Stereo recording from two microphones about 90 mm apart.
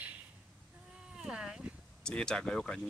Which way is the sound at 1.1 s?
5° right (ahead or behind).